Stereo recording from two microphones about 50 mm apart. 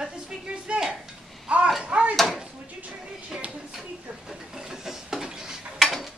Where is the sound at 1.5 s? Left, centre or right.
Centre.